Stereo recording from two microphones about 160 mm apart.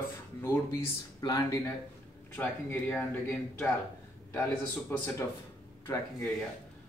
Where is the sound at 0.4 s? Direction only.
20° left (ahead or behind).